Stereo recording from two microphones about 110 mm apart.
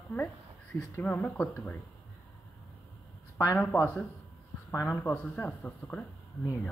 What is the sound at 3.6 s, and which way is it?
Speech, 15° left (ahead or behind).